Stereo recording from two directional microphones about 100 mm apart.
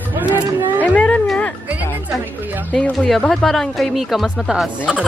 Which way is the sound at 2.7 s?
5° left (ahead or behind).